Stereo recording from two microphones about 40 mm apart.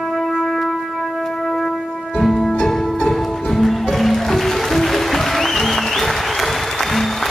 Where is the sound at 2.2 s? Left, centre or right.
Centre.